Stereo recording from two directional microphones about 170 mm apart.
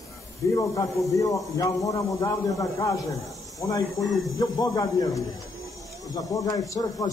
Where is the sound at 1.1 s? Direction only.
20° left (ahead or behind).